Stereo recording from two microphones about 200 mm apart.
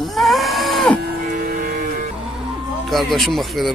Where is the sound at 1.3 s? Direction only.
45° right (ahead or behind).